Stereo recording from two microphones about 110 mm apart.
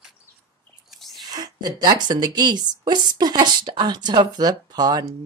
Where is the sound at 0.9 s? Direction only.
Centre (ahead or behind).